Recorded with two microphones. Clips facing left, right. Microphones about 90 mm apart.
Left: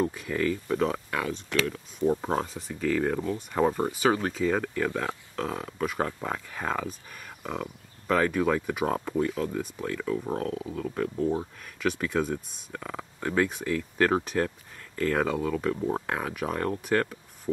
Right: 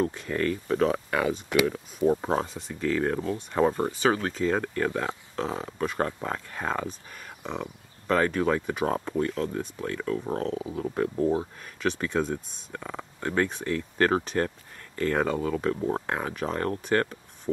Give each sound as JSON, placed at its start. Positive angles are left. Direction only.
{"t": 0.0, "sound": "speech", "side_deg": 5}
{"t": 1.5, "sound": "speech", "side_deg": -15}
{"t": 2.0, "sound": "speech", "side_deg": -5}
{"t": 11.8, "sound": "speech", "side_deg": 5}